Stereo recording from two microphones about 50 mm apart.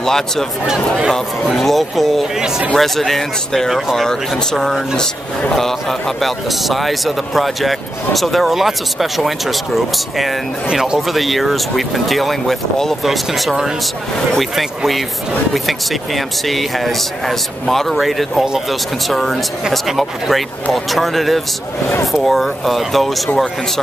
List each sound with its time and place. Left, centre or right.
0.0 s a man's voice: centre
10.7 s speech: centre
11.0 s a man's voice: centre